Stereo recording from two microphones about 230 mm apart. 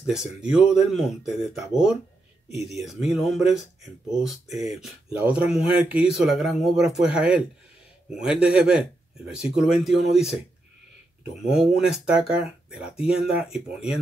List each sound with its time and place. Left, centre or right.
0.1 s speech: centre
11.4 s speech: centre